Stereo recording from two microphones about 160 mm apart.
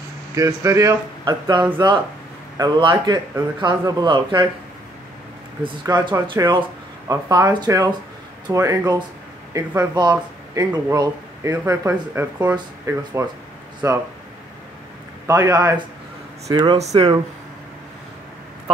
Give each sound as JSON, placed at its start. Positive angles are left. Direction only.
{"t": 0.3, "sound": "speech", "side_deg": -20}
{"t": 5.6, "sound": "speech", "side_deg": -30}
{"t": 15.2, "sound": "speech", "side_deg": -20}
{"t": 16.7, "sound": "speech", "side_deg": -40}